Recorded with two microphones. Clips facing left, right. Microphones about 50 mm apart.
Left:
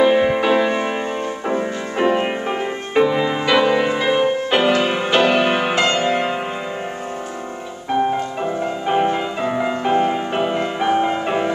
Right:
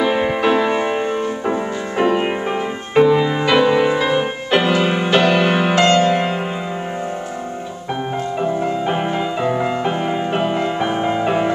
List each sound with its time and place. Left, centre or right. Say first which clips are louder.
0.0 s music: left 2 dB; centre
8.4 s music: right 3 dB; centre